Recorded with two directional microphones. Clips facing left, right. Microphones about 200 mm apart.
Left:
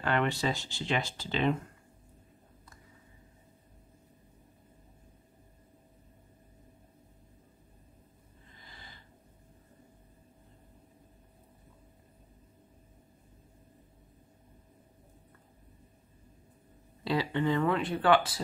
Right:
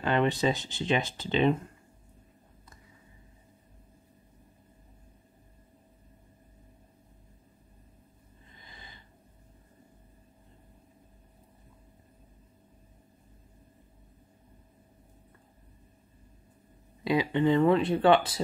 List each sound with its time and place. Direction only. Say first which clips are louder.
0.0 s speech: right 4 dB; 20° right (ahead or behind)
8.6 s a sound: right 1 dB; 20° right (ahead or behind)
17.0 s speech: right 4 dB; 15° right (ahead or behind)